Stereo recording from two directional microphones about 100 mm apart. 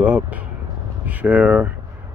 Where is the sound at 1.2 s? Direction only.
15° right (ahead or behind).